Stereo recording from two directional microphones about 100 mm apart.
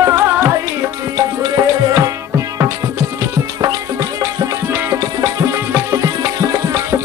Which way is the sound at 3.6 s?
35° right (ahead or behind).